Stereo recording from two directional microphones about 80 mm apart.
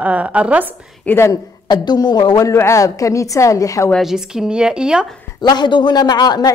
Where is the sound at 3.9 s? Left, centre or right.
Centre.